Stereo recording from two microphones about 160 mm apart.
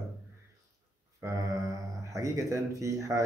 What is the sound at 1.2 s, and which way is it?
Speech, 20° right (ahead or behind).